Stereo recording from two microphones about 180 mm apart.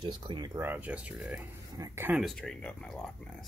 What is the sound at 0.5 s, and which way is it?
Speech, 10° right (ahead or behind).